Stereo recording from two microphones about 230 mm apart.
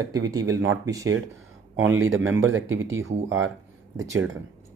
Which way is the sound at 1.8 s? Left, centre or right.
Right.